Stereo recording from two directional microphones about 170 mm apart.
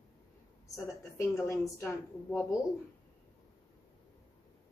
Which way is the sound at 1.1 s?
15° left (ahead or behind).